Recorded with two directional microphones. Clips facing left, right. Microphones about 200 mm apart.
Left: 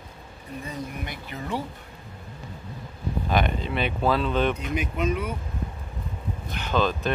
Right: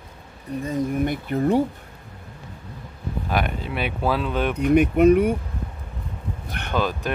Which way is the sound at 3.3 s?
10° right (ahead or behind).